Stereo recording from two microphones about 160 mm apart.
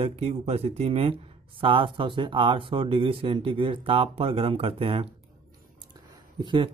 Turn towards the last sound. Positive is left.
turn(degrees=-30)  # may be behind; listen again after turning